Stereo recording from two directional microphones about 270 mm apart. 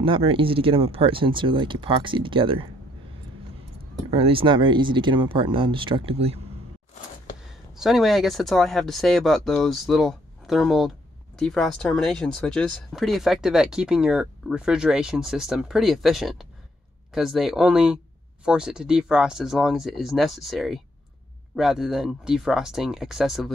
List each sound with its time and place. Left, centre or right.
0.0 s speech: centre
4.1 s speech: right
7.7 s speech: centre